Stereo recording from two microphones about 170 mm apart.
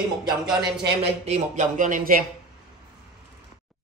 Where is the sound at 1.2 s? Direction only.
40° right (ahead or behind).